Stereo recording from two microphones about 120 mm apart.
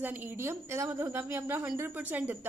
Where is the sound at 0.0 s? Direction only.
15° right (ahead or behind).